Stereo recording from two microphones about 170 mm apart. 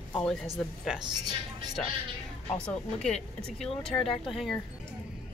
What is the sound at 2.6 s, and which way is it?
Speech, 5° left (ahead or behind).